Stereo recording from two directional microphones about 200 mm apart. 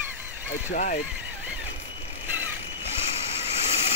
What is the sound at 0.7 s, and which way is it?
Speech, 40° left (ahead or behind).